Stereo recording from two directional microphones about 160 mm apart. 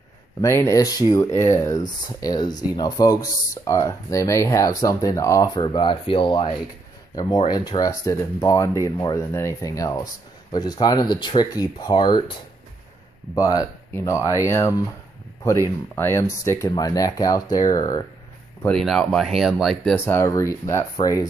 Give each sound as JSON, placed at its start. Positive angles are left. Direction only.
{"t": 0.4, "sound": "speech", "side_deg": 15}
{"t": 8.9, "sound": "speech", "side_deg": 30}
{"t": 9.2, "sound": "speech", "side_deg": 15}
{"t": 13.3, "sound": "speech", "side_deg": 20}
{"t": 15.9, "sound": "speech", "side_deg": 15}
{"t": 18.6, "sound": "speech", "side_deg": 5}